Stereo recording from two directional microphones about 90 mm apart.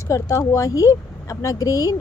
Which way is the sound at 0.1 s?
35° left (ahead or behind).